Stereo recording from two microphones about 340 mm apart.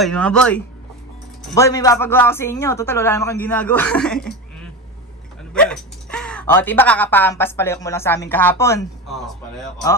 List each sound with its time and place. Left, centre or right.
0.0 s a man's voice: centre
5.5 s speech: centre